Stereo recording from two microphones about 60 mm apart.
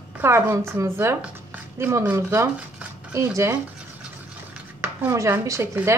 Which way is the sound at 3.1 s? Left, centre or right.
Right.